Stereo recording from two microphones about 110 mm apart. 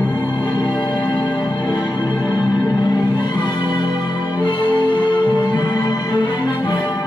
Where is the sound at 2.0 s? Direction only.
15° right (ahead or behind).